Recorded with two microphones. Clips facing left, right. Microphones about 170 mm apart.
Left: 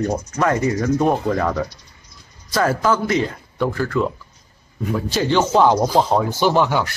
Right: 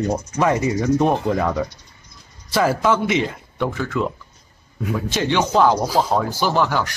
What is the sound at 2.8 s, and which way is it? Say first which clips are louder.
Speech: even; centre (ahead or behind).